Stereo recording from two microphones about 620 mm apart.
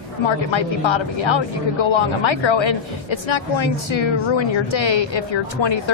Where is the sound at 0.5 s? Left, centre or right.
Left.